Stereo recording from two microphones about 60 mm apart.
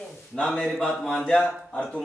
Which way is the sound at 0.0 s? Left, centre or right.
Centre.